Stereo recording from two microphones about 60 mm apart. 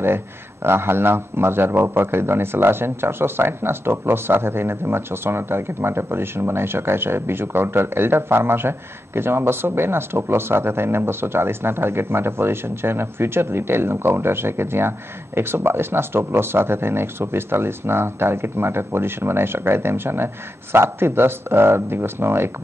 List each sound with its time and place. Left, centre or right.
0.0 s a man's voice: right